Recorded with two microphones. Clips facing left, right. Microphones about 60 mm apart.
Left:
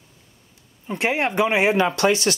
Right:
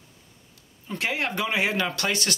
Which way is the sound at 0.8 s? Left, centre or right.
Left.